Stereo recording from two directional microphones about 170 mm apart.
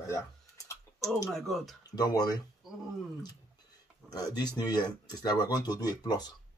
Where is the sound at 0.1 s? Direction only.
20° left (ahead or behind).